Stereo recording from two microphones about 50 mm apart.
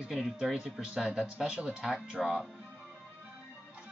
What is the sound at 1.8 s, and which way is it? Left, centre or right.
Speech, centre.